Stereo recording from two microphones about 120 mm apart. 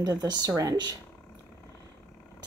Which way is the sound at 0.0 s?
35° right (ahead or behind).